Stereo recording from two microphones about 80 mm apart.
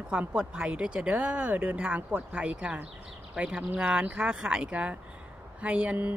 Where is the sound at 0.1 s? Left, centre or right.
Centre.